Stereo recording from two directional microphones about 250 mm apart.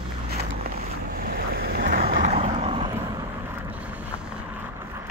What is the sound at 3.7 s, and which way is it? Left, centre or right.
Boat, centre.